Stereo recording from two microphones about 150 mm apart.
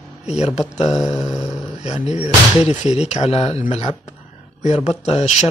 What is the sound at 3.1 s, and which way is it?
Speech, 45° left (ahead or behind).